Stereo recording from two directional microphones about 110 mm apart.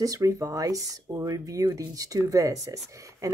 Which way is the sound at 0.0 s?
30° right (ahead or behind).